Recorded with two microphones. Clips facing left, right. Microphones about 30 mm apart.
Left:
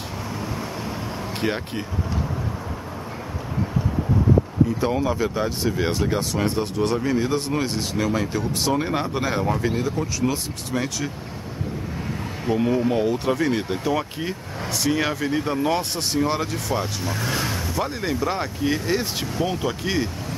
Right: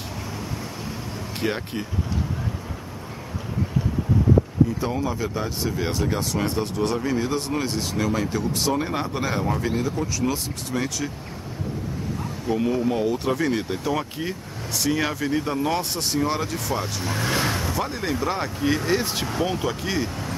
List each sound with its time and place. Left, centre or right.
0.4 s vehicle: centre
1.4 s speech: centre
4.7 s speech: centre
12.5 s speech: centre
17.7 s speech: centre